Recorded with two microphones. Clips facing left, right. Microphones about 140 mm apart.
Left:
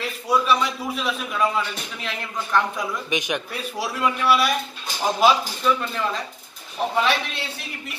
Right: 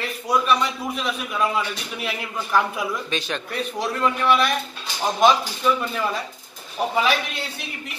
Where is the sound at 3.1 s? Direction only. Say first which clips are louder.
Left 2 dB; 15° left (ahead or behind).